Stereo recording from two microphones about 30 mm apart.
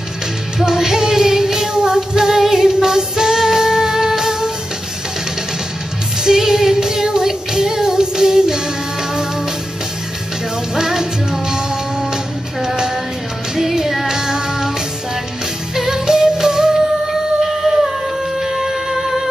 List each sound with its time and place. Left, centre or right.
0.6 s female singing: centre
3.3 s music: centre
6.2 s music: centre
10.7 s music: centre
13.6 s child singing: centre
15.7 s music: centre
17.5 s music: centre